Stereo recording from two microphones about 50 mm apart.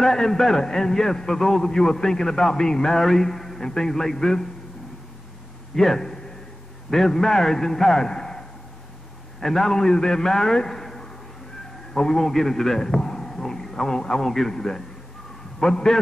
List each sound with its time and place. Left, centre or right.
0.0 s a man's voice: centre
5.8 s a man's voice: centre